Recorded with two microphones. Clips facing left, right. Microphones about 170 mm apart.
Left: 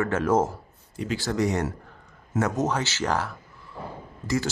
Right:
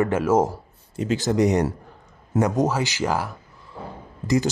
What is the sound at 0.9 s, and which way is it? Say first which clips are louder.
Speech: right 5 dB; 20° right (ahead or behind).